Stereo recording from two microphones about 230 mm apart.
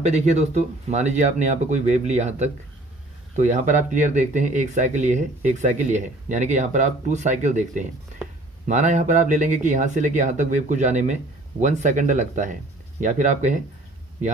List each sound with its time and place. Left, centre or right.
0.0 s speech: right